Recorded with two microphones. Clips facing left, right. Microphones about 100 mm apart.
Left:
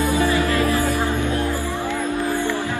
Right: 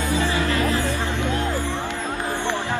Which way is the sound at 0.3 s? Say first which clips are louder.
Left 3 dB; 25° right (ahead or behind).